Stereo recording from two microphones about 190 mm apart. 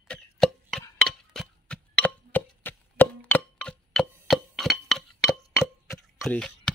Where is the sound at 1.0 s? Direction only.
Centre (ahead or behind).